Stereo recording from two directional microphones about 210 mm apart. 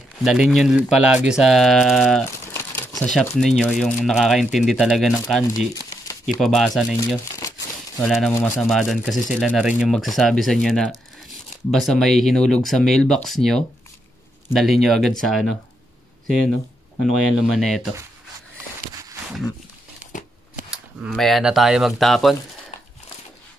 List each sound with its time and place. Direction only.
0.2 s speech: centre (ahead or behind)
2.2 s crumpling: 15° left (ahead or behind)
3.1 s speech: 5° left (ahead or behind)
5.8 s crumpling: 15° left (ahead or behind)
6.4 s speech: centre (ahead or behind)
17.0 s speech: centre (ahead or behind)
20.7 s speech: 5° right (ahead or behind)